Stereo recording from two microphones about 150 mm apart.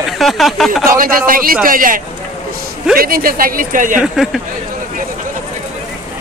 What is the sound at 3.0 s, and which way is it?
A man's voice, 75° right (ahead or behind).